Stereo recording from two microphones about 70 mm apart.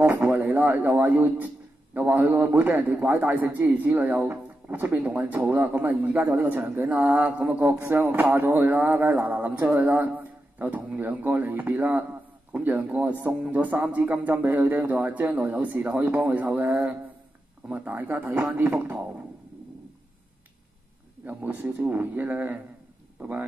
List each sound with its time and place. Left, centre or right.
0.0 s a man's voice: right
21.3 s speech: right